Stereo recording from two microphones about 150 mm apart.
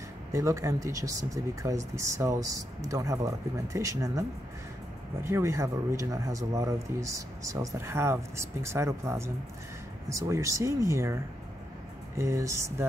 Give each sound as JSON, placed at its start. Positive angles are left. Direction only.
{"t": 0.3, "sound": "speech", "side_deg": -20}
{"t": 12.2, "sound": "speech", "side_deg": -20}